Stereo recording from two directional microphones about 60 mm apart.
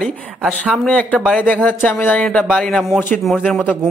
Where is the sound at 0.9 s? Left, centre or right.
Left.